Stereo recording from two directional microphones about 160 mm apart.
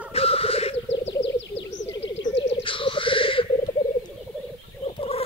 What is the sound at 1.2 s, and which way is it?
Frog, 90° left.